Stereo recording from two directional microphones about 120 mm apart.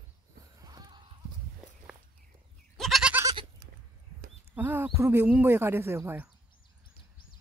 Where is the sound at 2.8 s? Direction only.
Centre (ahead or behind).